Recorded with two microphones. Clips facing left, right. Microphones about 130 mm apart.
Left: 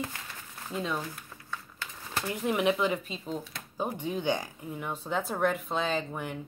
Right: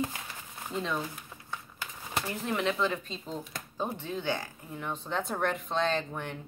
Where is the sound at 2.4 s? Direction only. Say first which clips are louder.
Left 4 dB; 15° left (ahead or behind).